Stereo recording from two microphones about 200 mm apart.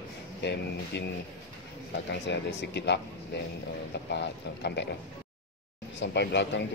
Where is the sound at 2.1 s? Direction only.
60° left (ahead or behind).